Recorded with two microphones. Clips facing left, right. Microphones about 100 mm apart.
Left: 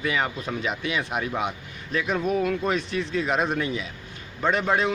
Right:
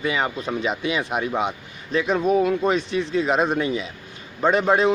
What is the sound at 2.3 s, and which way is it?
Speech, 20° right (ahead or behind).